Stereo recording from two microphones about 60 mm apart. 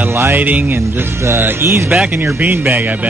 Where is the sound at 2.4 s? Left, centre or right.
Right.